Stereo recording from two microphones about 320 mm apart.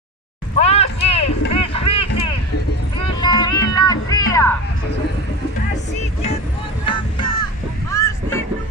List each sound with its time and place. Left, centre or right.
0.6 s a sound: centre
3.0 s music: centre
7.9 s boat: centre